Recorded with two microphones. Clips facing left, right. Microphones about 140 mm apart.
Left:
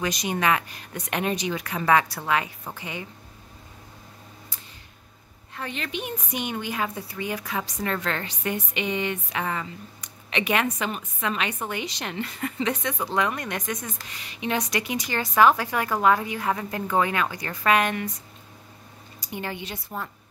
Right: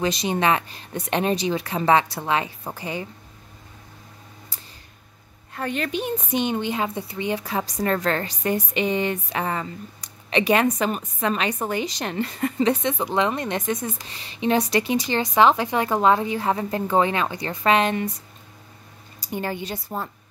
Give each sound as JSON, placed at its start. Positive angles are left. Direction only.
{"t": 0.0, "sound": "a woman's voice", "side_deg": -30}
{"t": 5.5, "sound": "a woman's voice", "side_deg": -45}
{"t": 19.3, "sound": "a woman's voice", "side_deg": -40}